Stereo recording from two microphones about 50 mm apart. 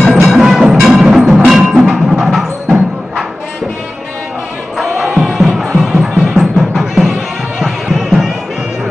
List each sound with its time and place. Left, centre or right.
0.1 s music: centre
0.4 s music: right
1.1 s tubular bells: centre
1.5 s music: centre
4.7 s music: centre